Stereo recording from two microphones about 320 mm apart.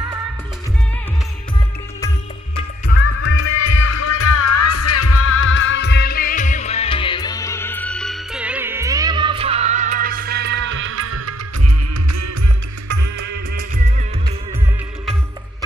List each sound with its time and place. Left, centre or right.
3.3 s music: left; by 11.3 s right
12.8 s music: right
13.2 s music: right